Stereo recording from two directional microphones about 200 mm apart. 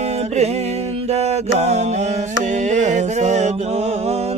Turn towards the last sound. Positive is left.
turn(degrees=-35)  # may be behind; listen again after turning